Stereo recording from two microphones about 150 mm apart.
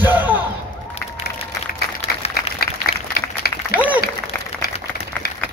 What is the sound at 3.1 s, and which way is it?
Applause, 90° left.